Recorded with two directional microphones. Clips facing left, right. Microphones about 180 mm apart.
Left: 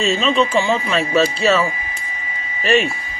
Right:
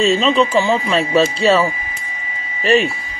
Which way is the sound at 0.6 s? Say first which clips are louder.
Right 2 dB; 35° right (ahead or behind).